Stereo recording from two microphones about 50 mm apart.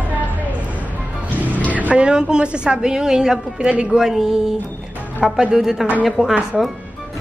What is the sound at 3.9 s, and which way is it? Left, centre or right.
Speech, centre.